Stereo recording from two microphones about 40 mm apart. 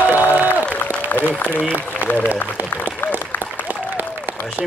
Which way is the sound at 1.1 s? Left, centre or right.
Left.